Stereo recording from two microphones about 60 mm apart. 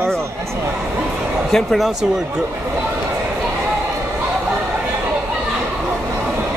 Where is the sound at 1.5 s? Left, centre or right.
Centre.